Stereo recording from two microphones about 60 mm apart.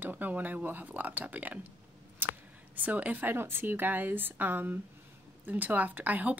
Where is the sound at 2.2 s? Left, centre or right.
Right.